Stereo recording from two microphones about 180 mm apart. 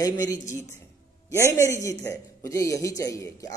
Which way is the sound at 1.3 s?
15° right (ahead or behind).